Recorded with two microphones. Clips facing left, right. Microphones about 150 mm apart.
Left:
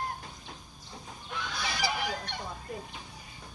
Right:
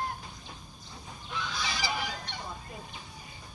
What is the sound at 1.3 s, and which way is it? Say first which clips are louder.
Fowl: even; 60° left (ahead or behind).